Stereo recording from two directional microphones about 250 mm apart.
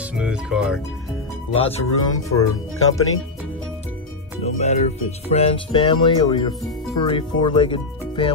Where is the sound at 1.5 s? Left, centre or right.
Left.